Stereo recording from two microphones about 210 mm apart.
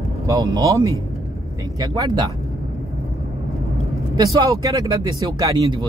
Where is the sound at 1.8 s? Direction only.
15° right (ahead or behind).